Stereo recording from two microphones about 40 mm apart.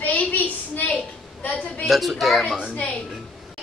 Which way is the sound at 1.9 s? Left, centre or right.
Centre.